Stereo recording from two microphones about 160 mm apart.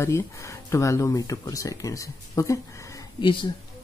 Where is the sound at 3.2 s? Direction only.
30° left (ahead or behind).